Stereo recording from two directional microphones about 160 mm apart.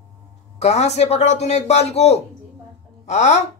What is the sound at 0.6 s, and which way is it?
Speech, 45° left (ahead or behind).